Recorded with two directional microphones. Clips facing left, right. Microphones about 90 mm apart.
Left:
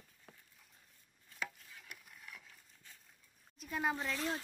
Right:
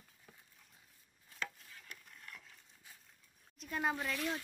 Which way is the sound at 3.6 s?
Centre (ahead or behind).